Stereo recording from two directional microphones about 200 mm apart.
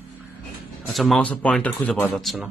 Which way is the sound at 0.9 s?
Centre (ahead or behind).